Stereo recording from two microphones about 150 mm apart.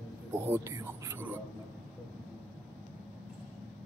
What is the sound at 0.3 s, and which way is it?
Speech, 20° right (ahead or behind).